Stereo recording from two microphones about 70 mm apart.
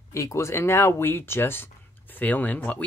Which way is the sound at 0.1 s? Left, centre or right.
Left.